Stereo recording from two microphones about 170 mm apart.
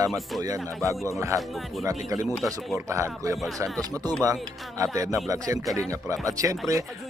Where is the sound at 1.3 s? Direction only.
20° right (ahead or behind).